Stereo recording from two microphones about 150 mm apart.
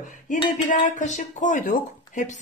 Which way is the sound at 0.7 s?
55° left (ahead or behind).